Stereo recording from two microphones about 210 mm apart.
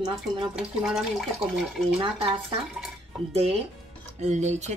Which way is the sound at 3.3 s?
30° right (ahead or behind).